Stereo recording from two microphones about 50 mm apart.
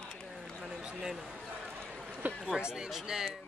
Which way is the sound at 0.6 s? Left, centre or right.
Centre.